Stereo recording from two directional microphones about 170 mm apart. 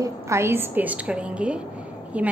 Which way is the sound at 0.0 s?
15° right (ahead or behind).